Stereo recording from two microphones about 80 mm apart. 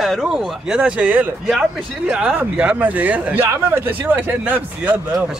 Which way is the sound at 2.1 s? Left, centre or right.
Centre.